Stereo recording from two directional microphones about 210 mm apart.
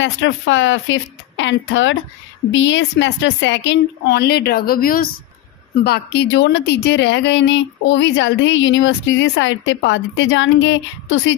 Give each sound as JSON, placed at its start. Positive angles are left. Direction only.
{"t": 0.0, "sound": "a woman's voice", "side_deg": 65}